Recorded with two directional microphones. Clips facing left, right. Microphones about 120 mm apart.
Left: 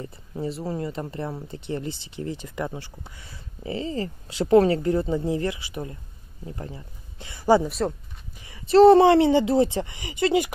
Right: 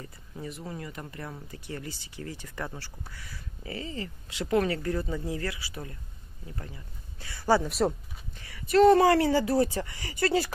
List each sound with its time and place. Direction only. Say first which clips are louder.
0.0 s speech: left 9 dB; 30° left (ahead or behind)
7.6 s speech: left 1 dB; centre (ahead or behind)
8.4 s speech: left 6 dB; 25° left (ahead or behind)